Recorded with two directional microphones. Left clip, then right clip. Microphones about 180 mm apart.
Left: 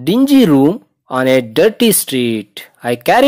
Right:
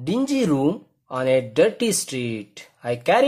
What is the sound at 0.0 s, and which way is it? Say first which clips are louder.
Speech: left 11 dB; 35° left (ahead or behind).